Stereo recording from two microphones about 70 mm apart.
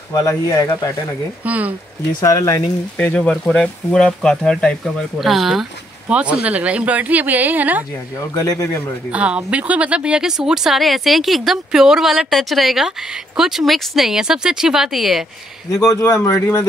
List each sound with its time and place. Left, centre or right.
0.1 s speech: left
1.4 s a woman's voice: right
2.2 s speech: left
3.0 s speech: left
5.2 s speech: centre
6.0 s a woman's voice: centre
8.2 s speech: left
9.1 s speech: centre
15.9 s speech: left